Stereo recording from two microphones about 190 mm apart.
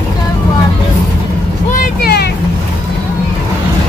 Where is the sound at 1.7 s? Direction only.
50° left (ahead or behind).